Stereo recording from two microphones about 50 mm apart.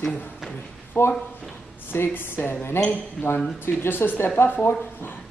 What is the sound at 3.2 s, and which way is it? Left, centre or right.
Speech, centre.